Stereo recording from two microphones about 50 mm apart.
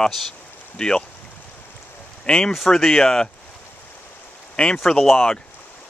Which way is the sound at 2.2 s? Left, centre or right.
Centre.